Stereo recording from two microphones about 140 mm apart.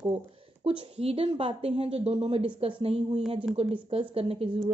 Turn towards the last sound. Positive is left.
turn(degrees=-40)  # may be behind; listen again after turning